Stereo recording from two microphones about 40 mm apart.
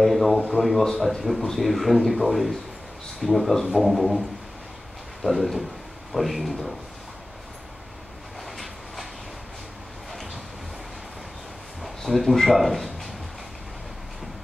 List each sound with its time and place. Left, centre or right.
0.0 s speech: centre
5.2 s speech: centre
8.5 s train: centre
12.0 s speech: centre